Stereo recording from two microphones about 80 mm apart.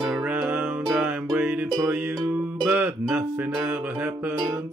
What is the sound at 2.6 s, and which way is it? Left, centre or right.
Music, centre.